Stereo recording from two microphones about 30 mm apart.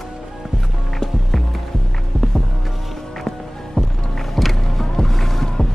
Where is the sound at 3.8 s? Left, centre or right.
Centre.